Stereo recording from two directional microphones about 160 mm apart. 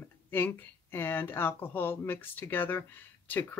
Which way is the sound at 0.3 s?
15° left (ahead or behind).